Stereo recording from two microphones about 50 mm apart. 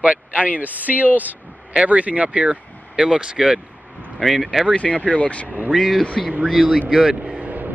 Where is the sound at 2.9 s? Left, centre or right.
Centre.